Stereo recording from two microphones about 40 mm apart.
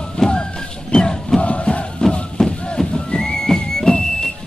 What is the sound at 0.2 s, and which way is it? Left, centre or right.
Music, centre.